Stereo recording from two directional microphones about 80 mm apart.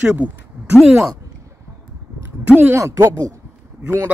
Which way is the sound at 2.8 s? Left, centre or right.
Right.